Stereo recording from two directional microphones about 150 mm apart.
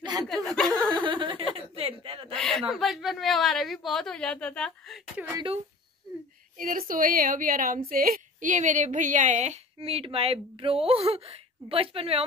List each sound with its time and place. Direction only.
0.3 s chuckle: centre (ahead or behind)
0.8 s chuckle: 30° right (ahead or behind)
2.3 s a woman's voice: 5° left (ahead or behind)
5.3 s speech: 35° right (ahead or behind)
6.5 s a woman's voice: 65° right (ahead or behind); by 12.2 s 40° right (ahead or behind)